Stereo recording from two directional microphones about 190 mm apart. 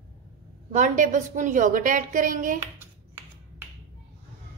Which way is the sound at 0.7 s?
40° right (ahead or behind).